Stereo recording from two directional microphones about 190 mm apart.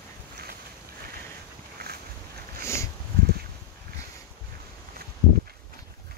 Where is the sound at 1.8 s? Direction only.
55° right (ahead or behind).